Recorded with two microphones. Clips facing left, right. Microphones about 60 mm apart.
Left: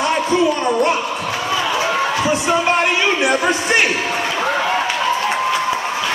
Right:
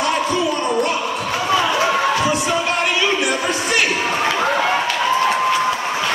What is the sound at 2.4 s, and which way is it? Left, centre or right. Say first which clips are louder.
Music: left 3 dB; left.